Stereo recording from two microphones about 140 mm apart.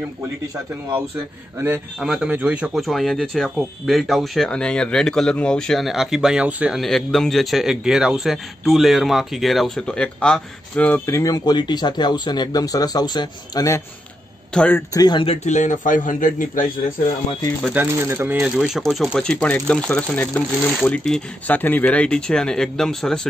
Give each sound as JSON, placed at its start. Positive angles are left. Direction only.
{"t": 2.0, "sound": "a man's voice", "side_deg": -5}
{"t": 14.5, "sound": "a man's voice", "side_deg": 10}
{"t": 15.0, "sound": "speech", "side_deg": 30}
{"t": 15.2, "sound": "a man's voice", "side_deg": 55}
{"t": 17.7, "sound": "a man's voice", "side_deg": -20}